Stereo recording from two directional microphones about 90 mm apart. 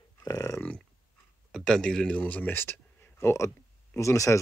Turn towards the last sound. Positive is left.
turn(degrees=35)  # may be behind; listen again after turning